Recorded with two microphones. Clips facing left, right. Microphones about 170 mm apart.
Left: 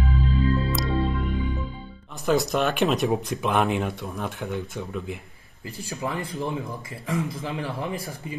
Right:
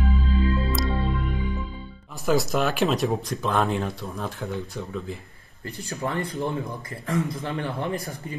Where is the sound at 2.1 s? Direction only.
Centre (ahead or behind).